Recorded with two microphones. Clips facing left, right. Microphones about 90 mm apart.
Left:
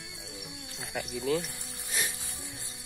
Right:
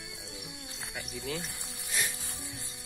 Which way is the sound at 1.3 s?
40° left (ahead or behind).